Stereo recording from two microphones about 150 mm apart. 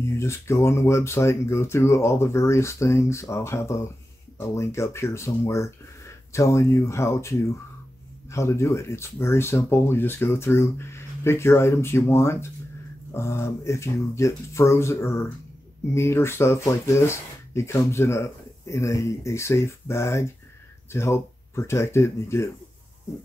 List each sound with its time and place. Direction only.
0.0 s speech: 20° left (ahead or behind)